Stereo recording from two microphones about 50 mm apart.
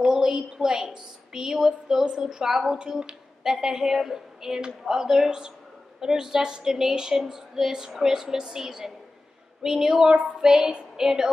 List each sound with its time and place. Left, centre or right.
0.0 s a woman's voice: centre